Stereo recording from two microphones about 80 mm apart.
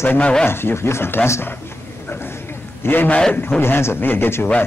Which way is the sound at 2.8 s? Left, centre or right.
Left.